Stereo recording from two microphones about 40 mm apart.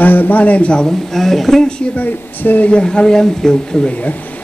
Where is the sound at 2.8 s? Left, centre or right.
Centre.